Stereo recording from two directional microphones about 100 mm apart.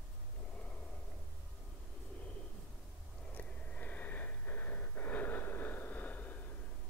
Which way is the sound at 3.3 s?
15° left (ahead or behind).